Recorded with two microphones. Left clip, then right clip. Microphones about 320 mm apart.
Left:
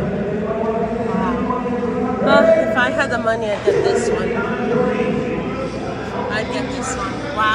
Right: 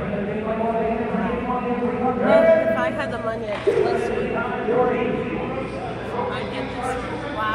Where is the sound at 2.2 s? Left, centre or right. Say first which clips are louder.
Left 3 dB; left.